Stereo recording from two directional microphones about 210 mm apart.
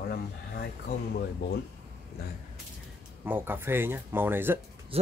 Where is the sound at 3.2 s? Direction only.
10° right (ahead or behind).